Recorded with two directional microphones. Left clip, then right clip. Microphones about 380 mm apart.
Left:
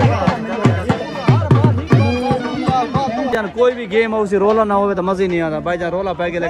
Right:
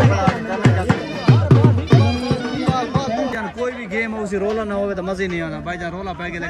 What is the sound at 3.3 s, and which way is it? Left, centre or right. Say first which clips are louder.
Speech: left 9 dB; centre.